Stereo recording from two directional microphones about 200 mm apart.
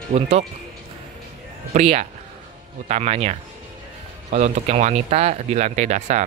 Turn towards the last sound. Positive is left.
turn(degrees=-35)  # may be behind; listen again after turning